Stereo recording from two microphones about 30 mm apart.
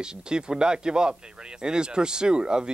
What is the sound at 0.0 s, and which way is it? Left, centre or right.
Speech, right.